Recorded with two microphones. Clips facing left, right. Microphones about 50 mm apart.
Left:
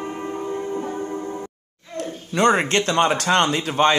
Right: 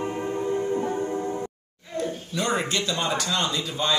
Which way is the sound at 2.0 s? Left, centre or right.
Left.